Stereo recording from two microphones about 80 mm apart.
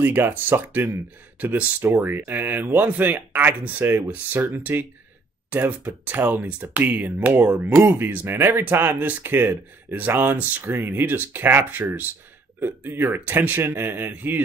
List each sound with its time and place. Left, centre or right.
0.0 s speech: right